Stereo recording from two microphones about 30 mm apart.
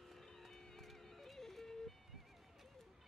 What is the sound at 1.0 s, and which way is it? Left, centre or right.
Music, centre.